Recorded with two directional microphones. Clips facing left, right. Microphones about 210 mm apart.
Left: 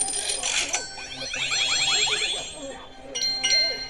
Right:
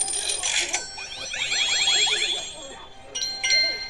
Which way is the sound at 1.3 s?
Centre (ahead or behind).